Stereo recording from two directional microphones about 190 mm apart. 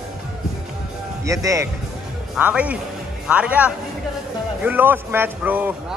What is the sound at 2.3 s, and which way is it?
A man's voice, 5° right (ahead or behind).